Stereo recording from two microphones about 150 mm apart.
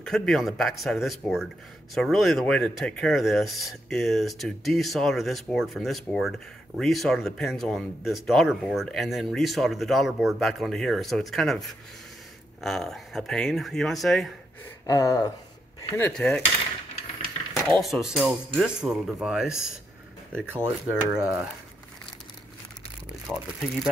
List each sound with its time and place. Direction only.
0.0 s speech: 5° left (ahead or behind)
12.6 s speech: centre (ahead or behind)
14.9 s speech: 25° left (ahead or behind)
16.0 s cutlery: 5° left (ahead or behind)
17.8 s speech: centre (ahead or behind)
20.3 s speech: 15° right (ahead or behind)
23.3 s speech: 5° right (ahead or behind)